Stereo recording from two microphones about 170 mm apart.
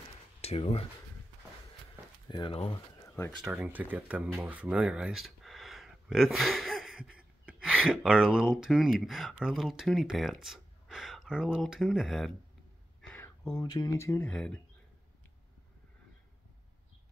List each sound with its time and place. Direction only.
0.4 s speech: 35° left (ahead or behind)
2.2 s speech: 30° left (ahead or behind)
3.2 s speech: 15° left (ahead or behind)
3.6 s speech: 10° right (ahead or behind)
13.1 s a sound: 10° left (ahead or behind)
13.5 s speech: 25° left (ahead or behind); by 14.6 s 5° left (ahead or behind)